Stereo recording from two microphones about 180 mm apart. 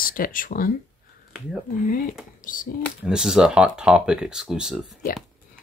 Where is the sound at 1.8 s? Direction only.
50° left (ahead or behind).